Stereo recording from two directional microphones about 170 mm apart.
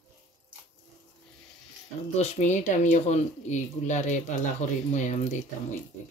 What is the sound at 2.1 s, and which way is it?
Speech, 45° left (ahead or behind).